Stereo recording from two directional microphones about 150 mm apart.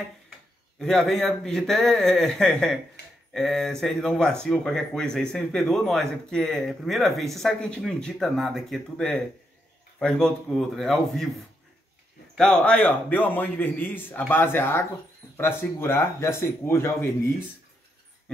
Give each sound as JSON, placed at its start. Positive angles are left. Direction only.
{"t": 0.7, "sound": "speech", "side_deg": 5}